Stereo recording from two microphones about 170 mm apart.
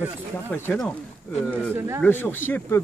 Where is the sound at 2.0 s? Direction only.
10° left (ahead or behind).